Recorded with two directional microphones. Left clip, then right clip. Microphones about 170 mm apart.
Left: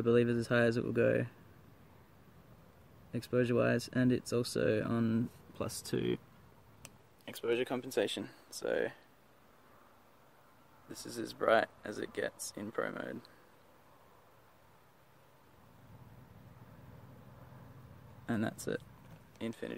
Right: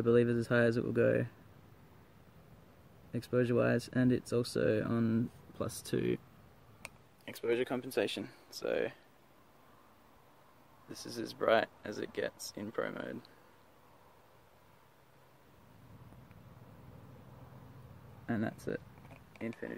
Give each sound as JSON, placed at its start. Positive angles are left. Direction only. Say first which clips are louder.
{"t": 0.0, "sound": "speech", "louder": "right 1 dB", "side_deg": 0}
{"t": 3.1, "sound": "speech", "louder": "even", "side_deg": 0}
{"t": 7.2, "sound": "speech", "louder": "even", "side_deg": 0}
{"t": 10.9, "sound": "speech", "louder": "even", "side_deg": -5}
{"t": 18.2, "sound": "speech", "louder": "left 1 dB", "side_deg": 10}